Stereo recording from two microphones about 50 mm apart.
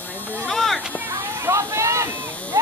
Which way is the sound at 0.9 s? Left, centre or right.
Right.